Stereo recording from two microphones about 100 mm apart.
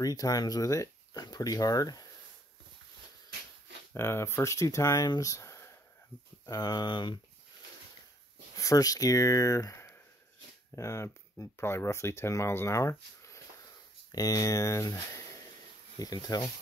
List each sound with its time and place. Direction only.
0.0 s speech: 40° left (ahead or behind)
3.9 s speech: 25° left (ahead or behind)
5.2 s a sound: 30° left (ahead or behind)
6.4 s speech: 40° left (ahead or behind)
8.5 s speech: 35° left (ahead or behind)